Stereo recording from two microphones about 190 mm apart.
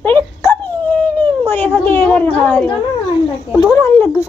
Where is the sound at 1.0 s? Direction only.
10° left (ahead or behind).